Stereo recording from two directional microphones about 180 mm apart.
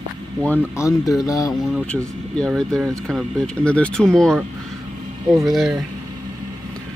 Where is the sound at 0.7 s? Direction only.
15° left (ahead or behind).